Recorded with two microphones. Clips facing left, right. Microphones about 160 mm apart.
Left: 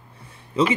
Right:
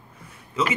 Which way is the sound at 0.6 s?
30° left (ahead or behind).